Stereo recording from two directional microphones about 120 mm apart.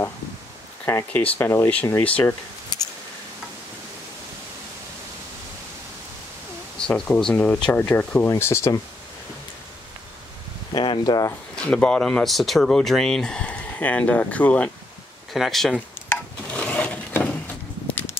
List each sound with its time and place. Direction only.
0.8 s speech: 15° left (ahead or behind)
6.8 s speech: 5° left (ahead or behind); by 8.8 s 20° left (ahead or behind)
10.7 s speech: 40° left (ahead or behind)
11.5 s speech: 5° left (ahead or behind)
15.3 s speech: centre (ahead or behind)
16.1 s a sound: 10° left (ahead or behind)